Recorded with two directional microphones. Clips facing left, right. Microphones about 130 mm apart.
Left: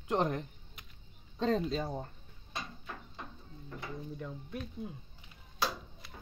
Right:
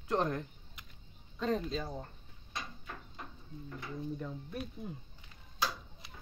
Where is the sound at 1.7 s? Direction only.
35° left (ahead or behind).